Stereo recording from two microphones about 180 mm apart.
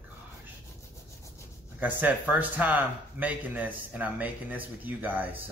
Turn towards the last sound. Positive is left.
turn(degrees=-10)  # may be behind; listen again after turning